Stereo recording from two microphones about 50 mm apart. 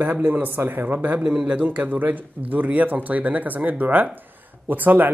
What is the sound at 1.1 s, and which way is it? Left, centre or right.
Speech, right.